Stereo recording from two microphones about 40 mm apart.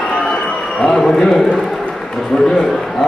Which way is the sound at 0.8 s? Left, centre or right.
Centre.